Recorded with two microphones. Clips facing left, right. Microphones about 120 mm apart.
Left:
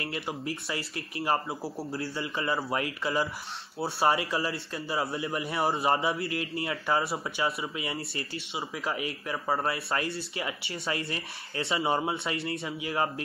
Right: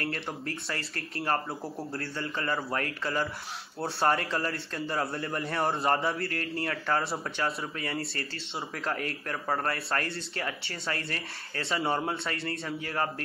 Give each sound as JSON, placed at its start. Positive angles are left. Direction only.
{"t": 0.0, "sound": "a man's voice", "side_deg": 10}
{"t": 10.1, "sound": "a man's voice", "side_deg": 10}
{"t": 11.7, "sound": "a man's voice", "side_deg": 5}